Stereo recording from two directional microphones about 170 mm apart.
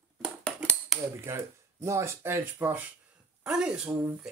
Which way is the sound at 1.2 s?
15° right (ahead or behind).